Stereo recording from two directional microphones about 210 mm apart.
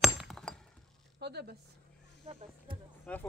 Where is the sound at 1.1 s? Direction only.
50° right (ahead or behind).